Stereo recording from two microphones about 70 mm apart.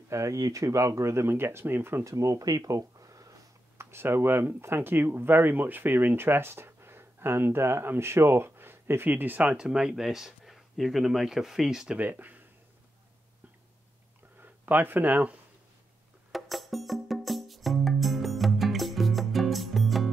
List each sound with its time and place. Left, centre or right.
0.1 s speech: right
3.7 s speech: right
9.4 s speech: centre
12.0 s speech: right
14.4 s speech: right
16.3 s music: centre